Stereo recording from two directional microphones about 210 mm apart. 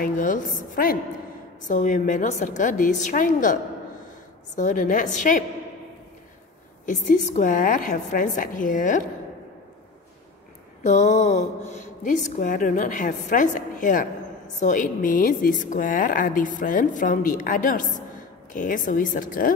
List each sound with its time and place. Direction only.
0.0 s a woman's voice: 40° left (ahead or behind)
4.6 s a woman's voice: 40° left (ahead or behind)
6.9 s a woman's voice: 35° left (ahead or behind)
10.8 s a woman's voice: 35° left (ahead or behind)